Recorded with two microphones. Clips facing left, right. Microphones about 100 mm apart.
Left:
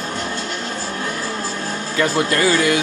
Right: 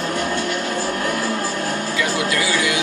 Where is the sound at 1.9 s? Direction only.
45° left (ahead or behind).